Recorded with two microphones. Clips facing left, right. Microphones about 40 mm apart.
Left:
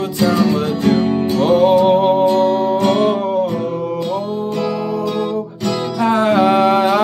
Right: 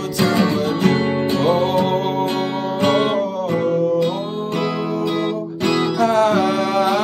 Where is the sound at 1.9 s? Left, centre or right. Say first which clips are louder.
Left 7 dB; centre.